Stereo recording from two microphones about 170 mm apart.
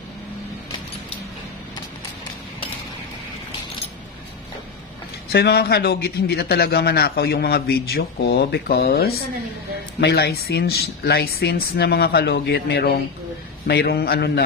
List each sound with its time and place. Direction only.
5.3 s a man's voice: 70° left (ahead or behind)